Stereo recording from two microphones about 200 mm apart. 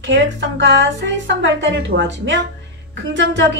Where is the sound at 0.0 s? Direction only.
65° right (ahead or behind).